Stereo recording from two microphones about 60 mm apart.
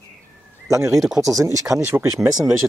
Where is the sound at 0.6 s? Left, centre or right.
Right.